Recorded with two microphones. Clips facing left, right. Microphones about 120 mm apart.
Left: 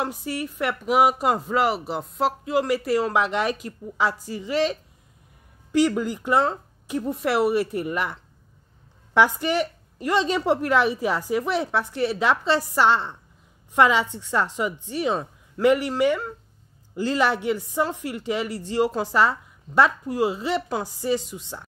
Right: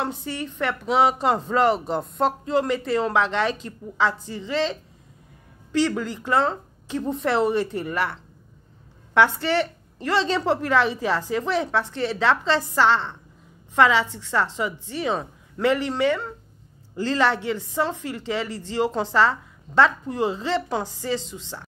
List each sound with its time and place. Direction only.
0.0 s speech: 10° left (ahead or behind)
9.2 s speech: 15° left (ahead or behind)